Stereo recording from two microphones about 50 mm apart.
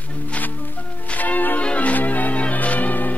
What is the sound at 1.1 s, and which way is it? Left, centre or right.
Church bell, left.